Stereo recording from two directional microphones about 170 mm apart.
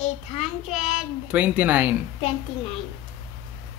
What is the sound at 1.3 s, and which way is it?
Speech, 10° right (ahead or behind).